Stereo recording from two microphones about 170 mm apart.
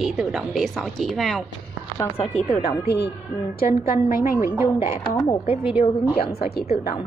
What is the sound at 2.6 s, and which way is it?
Speech, 75° left (ahead or behind).